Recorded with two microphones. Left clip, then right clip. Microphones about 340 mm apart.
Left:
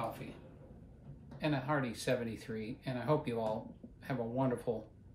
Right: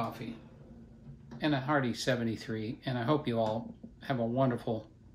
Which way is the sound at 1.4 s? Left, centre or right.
Right.